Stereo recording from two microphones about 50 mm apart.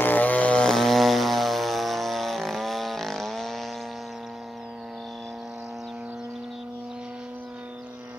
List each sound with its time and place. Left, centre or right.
0.0 s vehicle: left
0.6 s vehicle: centre